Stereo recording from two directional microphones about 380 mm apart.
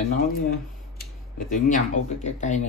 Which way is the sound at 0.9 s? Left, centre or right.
Left.